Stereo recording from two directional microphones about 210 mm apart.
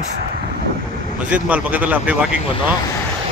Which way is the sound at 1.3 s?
5° right (ahead or behind).